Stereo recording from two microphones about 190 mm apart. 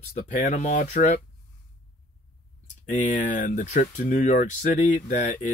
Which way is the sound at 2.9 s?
45° left (ahead or behind).